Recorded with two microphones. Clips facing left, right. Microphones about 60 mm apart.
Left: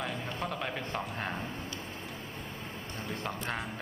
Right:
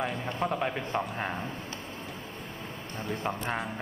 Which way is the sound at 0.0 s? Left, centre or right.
Centre.